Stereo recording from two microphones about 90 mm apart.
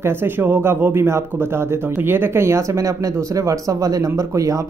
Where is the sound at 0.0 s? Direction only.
25° right (ahead or behind).